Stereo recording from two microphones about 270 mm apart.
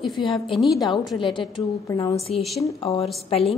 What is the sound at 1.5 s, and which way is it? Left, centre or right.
Speech, centre.